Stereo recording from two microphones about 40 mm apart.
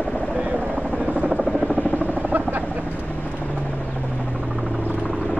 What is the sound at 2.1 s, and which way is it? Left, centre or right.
Helicopter, right.